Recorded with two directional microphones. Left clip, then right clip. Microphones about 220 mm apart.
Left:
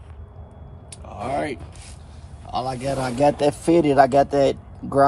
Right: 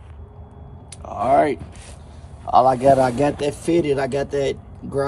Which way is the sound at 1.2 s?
30° right (ahead or behind).